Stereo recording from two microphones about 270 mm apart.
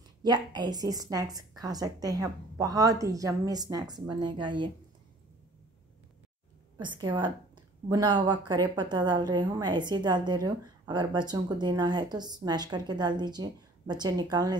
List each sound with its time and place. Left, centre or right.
0.2 s speech: centre
6.8 s speech: centre